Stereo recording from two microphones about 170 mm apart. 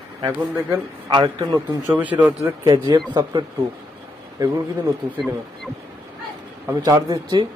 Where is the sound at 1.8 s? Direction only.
10° right (ahead or behind).